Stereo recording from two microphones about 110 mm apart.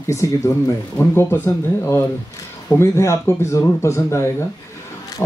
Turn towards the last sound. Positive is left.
turn(degrees=25)  # may be behind; listen again after turning